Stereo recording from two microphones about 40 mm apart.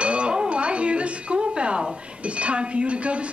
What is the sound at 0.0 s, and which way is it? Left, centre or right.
A man's voice, right.